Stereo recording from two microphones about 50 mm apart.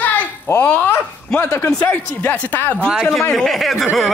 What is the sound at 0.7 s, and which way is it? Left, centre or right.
Speech, left.